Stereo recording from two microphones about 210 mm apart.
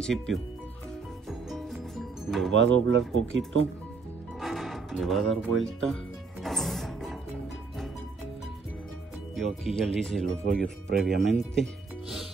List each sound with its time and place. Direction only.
0.0 s speech: centre (ahead or behind)
1.5 s music: centre (ahead or behind)
2.5 s speech: 60° right (ahead or behind)
4.4 s music: centre (ahead or behind)
6.4 s music: centre (ahead or behind)
9.3 s speech: centre (ahead or behind)
11.3 s music: centre (ahead or behind)